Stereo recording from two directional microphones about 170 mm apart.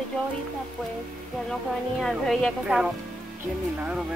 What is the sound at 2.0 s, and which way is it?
Speech, centre (ahead or behind).